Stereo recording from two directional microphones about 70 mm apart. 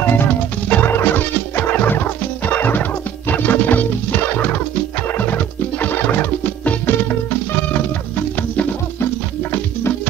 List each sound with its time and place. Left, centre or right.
0.0 s music: left
9.0 s music: left